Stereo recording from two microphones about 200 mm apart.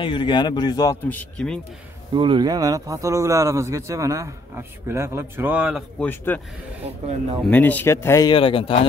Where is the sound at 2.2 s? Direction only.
25° right (ahead or behind); by 5.8 s 5° right (ahead or behind).